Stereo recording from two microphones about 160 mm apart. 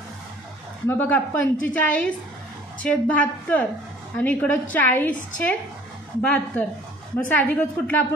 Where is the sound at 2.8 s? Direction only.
10° left (ahead or behind).